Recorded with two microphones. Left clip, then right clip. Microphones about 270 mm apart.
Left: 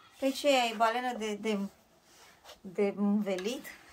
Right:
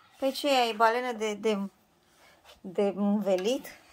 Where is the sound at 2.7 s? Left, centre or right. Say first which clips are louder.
Right 3 dB; right.